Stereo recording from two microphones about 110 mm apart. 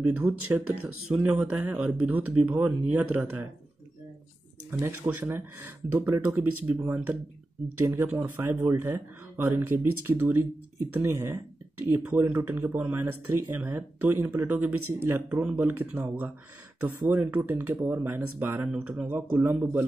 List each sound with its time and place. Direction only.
0.0 s speech: 15° right (ahead or behind)
4.6 s speech: 20° right (ahead or behind)